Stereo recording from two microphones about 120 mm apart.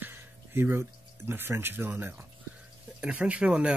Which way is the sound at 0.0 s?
20° right (ahead or behind).